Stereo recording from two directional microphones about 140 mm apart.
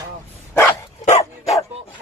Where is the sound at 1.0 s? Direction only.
50° left (ahead or behind).